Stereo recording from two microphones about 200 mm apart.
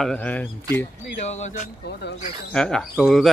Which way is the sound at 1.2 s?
35° left (ahead or behind).